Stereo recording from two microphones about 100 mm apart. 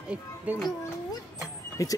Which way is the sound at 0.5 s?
15° right (ahead or behind).